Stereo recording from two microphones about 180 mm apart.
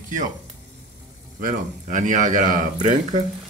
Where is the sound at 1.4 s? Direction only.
45° right (ahead or behind).